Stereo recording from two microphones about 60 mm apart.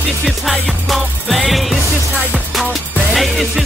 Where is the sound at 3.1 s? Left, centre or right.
Centre.